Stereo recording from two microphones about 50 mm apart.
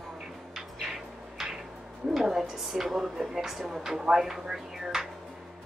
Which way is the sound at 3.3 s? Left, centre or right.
Centre.